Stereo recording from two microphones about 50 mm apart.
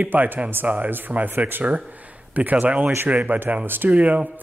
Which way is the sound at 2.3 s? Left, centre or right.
Right.